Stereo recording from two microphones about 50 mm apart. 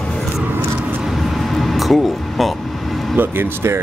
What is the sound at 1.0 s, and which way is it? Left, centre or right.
Air conditioning, centre.